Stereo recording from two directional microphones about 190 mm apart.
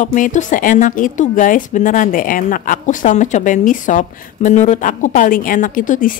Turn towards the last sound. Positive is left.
turn(degrees=45)  # may be behind; listen again after turning